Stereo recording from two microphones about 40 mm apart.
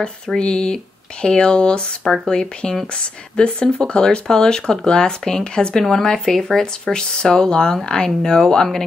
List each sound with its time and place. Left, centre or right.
0.4 s speech: left
5.9 s speech: centre